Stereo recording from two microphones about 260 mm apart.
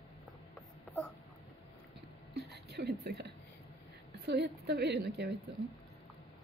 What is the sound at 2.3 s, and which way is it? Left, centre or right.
Whispering, right.